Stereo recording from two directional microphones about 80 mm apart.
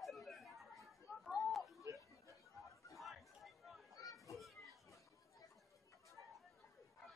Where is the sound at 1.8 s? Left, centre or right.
Right.